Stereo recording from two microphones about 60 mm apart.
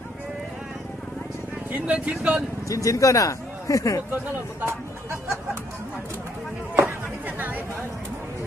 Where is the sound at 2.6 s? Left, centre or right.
Left.